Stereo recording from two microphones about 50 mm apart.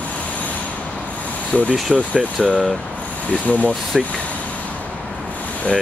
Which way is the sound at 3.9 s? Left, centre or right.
Centre.